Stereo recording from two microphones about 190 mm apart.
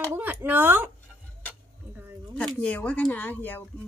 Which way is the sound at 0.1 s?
10° right (ahead or behind).